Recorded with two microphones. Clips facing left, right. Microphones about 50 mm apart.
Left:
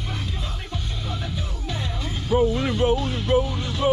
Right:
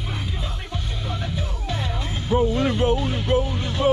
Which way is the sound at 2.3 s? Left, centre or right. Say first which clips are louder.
Left 1 dB; centre.